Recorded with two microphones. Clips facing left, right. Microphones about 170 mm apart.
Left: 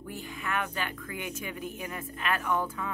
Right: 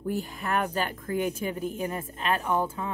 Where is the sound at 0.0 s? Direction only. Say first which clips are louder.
Right 7 dB; 40° right (ahead or behind).